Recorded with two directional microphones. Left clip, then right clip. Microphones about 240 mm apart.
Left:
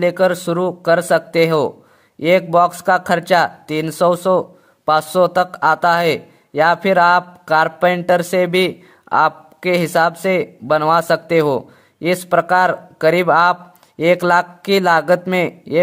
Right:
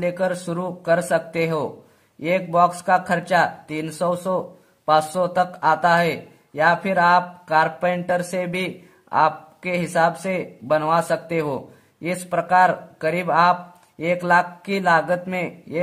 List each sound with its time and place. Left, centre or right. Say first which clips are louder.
0.0 s speech: left 8 dB; left